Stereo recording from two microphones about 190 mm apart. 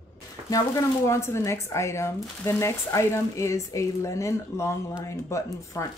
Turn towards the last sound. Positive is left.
turn(degrees=15)  # may be behind; listen again after turning